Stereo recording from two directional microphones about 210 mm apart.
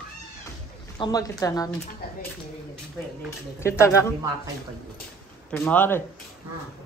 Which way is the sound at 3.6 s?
15° left (ahead or behind).